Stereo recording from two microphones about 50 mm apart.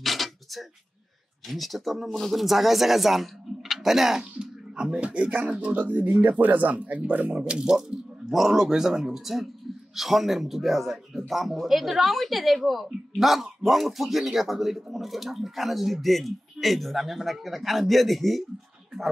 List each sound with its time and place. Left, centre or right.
0.0 s a sound: centre
1.5 s a man's voice: centre; by 7.3 s right
7.3 s a man's voice: centre